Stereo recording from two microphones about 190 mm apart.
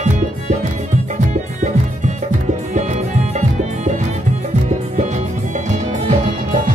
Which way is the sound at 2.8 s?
40° right (ahead or behind).